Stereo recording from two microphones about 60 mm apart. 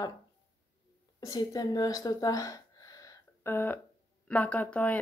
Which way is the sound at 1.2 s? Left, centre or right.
Left.